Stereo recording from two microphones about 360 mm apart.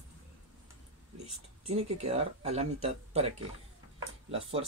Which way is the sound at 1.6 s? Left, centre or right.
Centre.